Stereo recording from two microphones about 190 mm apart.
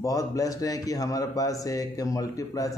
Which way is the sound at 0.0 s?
15° left (ahead or behind).